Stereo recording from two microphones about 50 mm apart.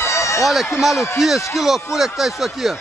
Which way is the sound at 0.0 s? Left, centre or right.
Left.